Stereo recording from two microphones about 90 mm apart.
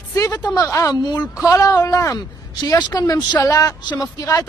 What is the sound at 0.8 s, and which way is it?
Speech, 50° left (ahead or behind).